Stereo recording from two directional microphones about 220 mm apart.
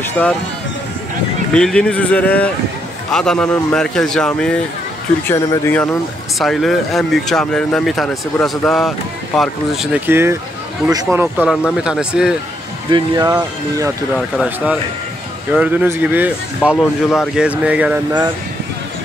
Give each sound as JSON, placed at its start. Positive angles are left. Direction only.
{"t": 0.2, "sound": "speech", "side_deg": 5}
{"t": 1.5, "sound": "speech", "side_deg": 5}
{"t": 12.9, "sound": "speech", "side_deg": -20}
{"t": 14.1, "sound": "speech", "side_deg": 0}